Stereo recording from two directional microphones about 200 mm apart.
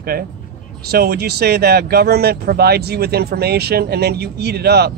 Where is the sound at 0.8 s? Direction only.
50° right (ahead or behind).